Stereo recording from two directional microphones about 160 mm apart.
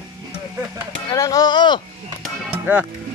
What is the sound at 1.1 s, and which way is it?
Speech, 20° left (ahead or behind).